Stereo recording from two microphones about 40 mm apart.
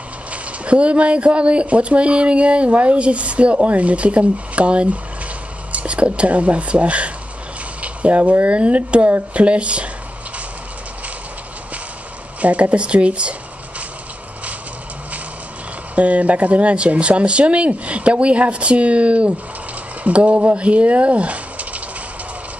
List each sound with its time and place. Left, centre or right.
0.3 s speech: right
7.8 s a sound: right
8.5 s speech: right
12.4 s speech: right
15.9 s speech: right